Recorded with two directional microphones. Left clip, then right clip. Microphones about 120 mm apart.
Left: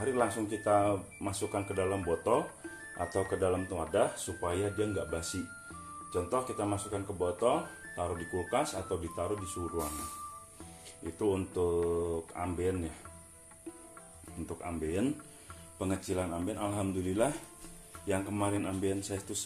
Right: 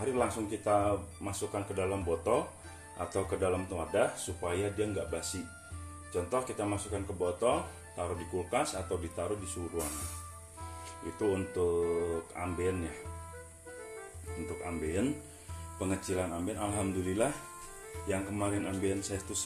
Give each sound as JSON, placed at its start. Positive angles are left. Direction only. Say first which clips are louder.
{"t": 0.0, "sound": "speech", "louder": "left 1 dB", "side_deg": 0}
{"t": 0.8, "sound": "speech", "louder": "left 1 dB", "side_deg": 25}
{"t": 1.8, "sound": "speech", "louder": "even", "side_deg": 5}
{"t": 11.1, "sound": "speech", "louder": "even", "side_deg": 5}
{"t": 14.6, "sound": "speech", "louder": "left 1 dB", "side_deg": 0}
{"t": 18.3, "sound": "speech", "louder": "left 1 dB", "side_deg": 10}